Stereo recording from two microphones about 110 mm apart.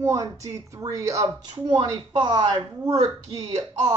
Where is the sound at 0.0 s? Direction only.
30° right (ahead or behind).